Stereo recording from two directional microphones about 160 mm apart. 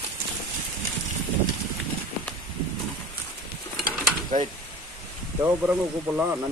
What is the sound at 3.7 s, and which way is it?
Pulleys, 70° right (ahead or behind).